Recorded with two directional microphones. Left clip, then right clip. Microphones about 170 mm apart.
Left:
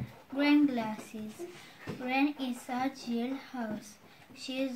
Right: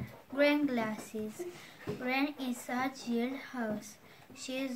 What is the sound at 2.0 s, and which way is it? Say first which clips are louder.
A woman's voice: left 3 dB; 15° right (ahead or behind).